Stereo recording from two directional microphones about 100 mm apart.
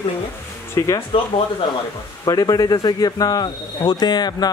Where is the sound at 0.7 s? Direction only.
30° left (ahead or behind).